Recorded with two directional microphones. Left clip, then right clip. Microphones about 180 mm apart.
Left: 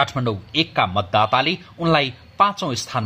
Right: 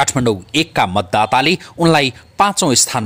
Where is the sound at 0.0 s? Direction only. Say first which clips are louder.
Right 6 dB; 65° right (ahead or behind).